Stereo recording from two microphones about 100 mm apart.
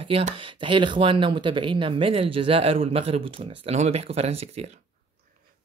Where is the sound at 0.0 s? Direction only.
65° right (ahead or behind); by 4.6 s 85° right.